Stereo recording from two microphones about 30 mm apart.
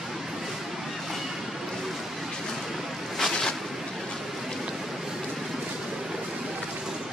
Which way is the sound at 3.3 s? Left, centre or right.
Left.